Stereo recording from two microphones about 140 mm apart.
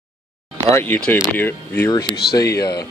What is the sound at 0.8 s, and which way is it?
Speech, 10° left (ahead or behind).